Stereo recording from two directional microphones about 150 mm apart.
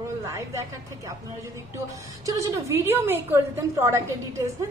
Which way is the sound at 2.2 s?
20° right (ahead or behind).